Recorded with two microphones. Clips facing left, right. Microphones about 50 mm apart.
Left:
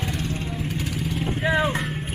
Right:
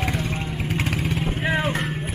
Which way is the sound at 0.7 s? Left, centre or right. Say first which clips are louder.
Right 4 dB; right.